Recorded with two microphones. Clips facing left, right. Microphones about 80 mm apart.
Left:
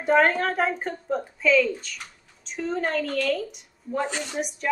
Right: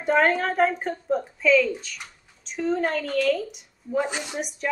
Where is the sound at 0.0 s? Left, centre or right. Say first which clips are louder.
Left 1 dB; centre.